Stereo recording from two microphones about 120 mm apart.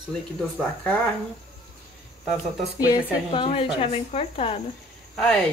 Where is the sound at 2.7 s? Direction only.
30° left (ahead or behind).